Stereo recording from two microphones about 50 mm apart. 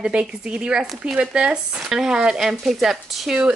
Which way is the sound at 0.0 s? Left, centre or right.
Right.